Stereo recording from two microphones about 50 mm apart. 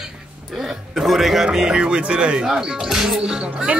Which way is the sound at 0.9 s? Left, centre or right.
Centre.